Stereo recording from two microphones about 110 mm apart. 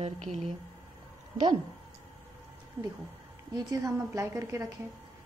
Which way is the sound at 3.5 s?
40° right (ahead or behind).